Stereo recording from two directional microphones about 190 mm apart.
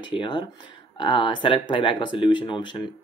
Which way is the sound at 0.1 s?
25° left (ahead or behind).